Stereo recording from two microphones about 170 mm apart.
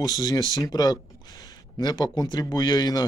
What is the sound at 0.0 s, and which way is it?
A man's voice, 25° left (ahead or behind).